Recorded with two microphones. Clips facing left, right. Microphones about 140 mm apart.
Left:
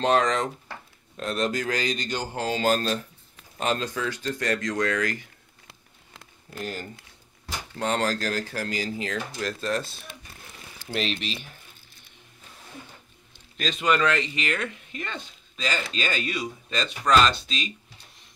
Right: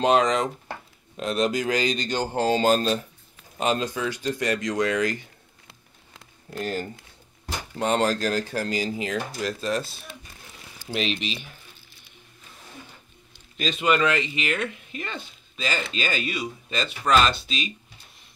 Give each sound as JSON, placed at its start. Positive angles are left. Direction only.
{"t": 0.0, "sound": "speech", "side_deg": -10}
{"t": 7.7, "sound": "speech", "side_deg": -20}
{"t": 10.9, "sound": "speech", "side_deg": -10}
{"t": 13.6, "sound": "speech", "side_deg": -5}